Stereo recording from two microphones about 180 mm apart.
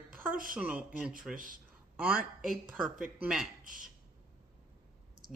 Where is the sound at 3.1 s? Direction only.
5° right (ahead or behind).